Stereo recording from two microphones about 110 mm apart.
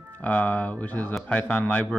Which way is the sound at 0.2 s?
15° left (ahead or behind).